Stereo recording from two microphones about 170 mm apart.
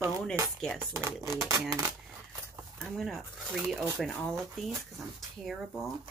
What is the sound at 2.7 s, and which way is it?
Speech, centre (ahead or behind).